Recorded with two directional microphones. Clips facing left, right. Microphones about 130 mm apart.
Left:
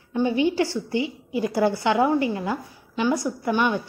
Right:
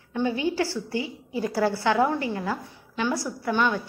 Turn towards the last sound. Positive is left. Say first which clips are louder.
# left 2 dB
turn(degrees=15)  # may be behind; listen again after turning